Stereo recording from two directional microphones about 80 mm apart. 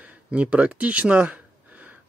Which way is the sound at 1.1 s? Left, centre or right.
Centre.